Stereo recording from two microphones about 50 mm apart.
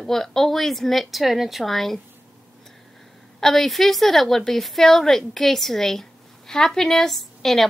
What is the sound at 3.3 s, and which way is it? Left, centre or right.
A woman's voice, centre.